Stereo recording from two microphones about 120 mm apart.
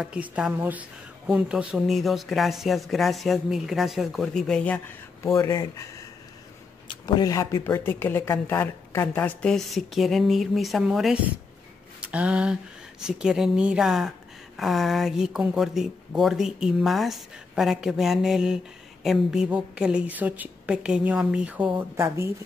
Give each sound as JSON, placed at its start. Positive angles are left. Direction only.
{"t": 0.0, "sound": "a woman's voice", "side_deg": -5}
{"t": 12.0, "sound": "a sound", "side_deg": -10}
{"t": 13.0, "sound": "a woman's voice", "side_deg": -5}
{"t": 22.0, "sound": "speech", "side_deg": -20}